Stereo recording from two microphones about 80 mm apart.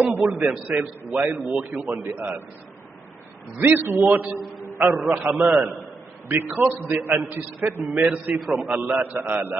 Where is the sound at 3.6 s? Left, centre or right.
Right.